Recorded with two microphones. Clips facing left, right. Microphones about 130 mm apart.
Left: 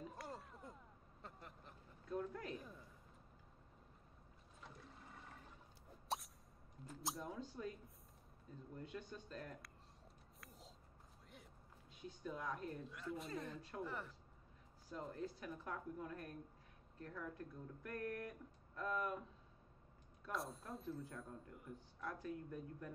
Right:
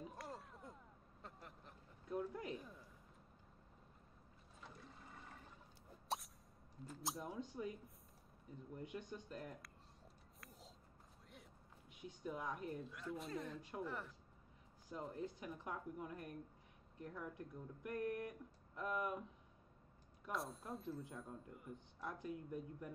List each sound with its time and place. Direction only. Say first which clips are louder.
0.1 s a sound: even; centre (ahead or behind)
2.0 s a man's voice: right 1 dB; 15° right (ahead or behind)
4.6 s water: even; centre (ahead or behind)
6.1 s a sound: even; centre (ahead or behind)
6.9 s speech: even; centre (ahead or behind)
7.2 s speech: right 2 dB; 15° right (ahead or behind)
8.7 s speech: right 2 dB; 15° right (ahead or behind)
11.9 s speech: right 1 dB; 15° right (ahead or behind)
12.8 s speech: even; centre (ahead or behind)
13.6 s speech: right 1 dB; 15° right (ahead or behind)
13.8 s speech: right 1 dB; centre (ahead or behind)
14.9 s speech: even; 15° right (ahead or behind)
20.2 s speech: right 1 dB; centre (ahead or behind)
21.0 s speech: even; 20° right (ahead or behind)